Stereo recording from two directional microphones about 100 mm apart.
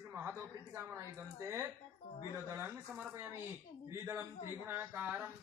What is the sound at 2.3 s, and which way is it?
Speech, 25° right (ahead or behind).